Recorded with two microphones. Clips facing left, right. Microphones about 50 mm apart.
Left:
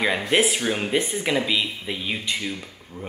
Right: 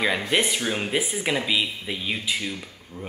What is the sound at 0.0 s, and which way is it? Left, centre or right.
Speech, centre.